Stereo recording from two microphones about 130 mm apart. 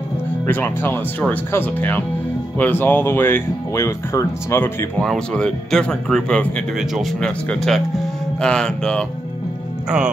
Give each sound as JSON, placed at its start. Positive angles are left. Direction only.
{"t": 0.5, "sound": "speech", "side_deg": 15}
{"t": 5.0, "sound": "speech", "side_deg": 5}